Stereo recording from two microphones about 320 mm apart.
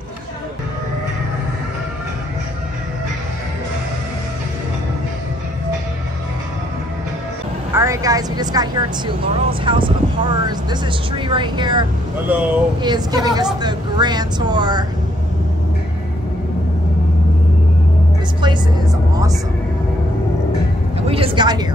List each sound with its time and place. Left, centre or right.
7.7 s a woman's voice: centre
18.4 s music: centre
21.1 s a sound: centre